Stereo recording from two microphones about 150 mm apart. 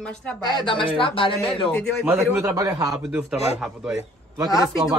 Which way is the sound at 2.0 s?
15° right (ahead or behind).